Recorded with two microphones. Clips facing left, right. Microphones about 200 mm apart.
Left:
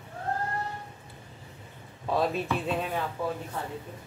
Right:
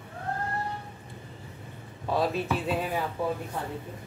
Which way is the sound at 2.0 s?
Centre (ahead or behind).